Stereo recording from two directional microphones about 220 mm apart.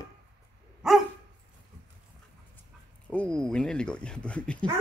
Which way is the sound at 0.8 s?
Centre (ahead or behind).